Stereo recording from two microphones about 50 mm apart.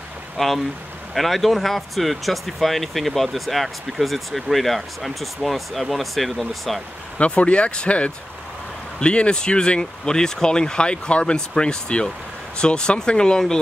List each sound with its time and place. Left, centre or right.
0.4 s speech: centre
1.1 s speech: centre
7.2 s speech: left